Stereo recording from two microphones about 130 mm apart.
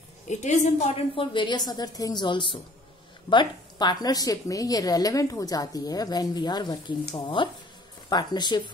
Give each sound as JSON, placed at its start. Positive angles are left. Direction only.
{"t": 0.3, "sound": "a woman's voice", "side_deg": 65}
{"t": 1.1, "sound": "a woman's voice", "side_deg": 40}